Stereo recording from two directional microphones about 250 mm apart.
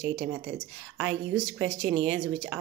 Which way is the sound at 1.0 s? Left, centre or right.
Right.